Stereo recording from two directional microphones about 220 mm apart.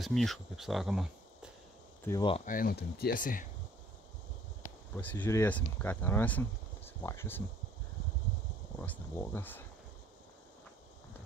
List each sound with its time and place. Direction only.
0.0 s speech: centre (ahead or behind)
2.0 s speech: 20° left (ahead or behind)
2.4 s speech: 40° left (ahead or behind)
4.9 s speech: 10° left (ahead or behind)
8.8 s speech: 10° left (ahead or behind)